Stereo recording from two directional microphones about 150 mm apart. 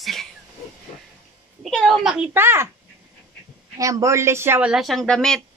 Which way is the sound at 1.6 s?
Centre (ahead or behind).